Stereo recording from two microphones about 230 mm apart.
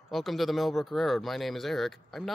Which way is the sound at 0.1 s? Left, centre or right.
Centre.